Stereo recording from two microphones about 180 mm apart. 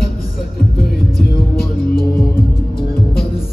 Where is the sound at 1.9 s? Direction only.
55° left (ahead or behind).